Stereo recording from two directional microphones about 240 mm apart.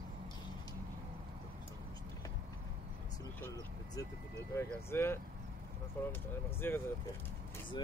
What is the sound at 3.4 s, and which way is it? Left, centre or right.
Speech, centre.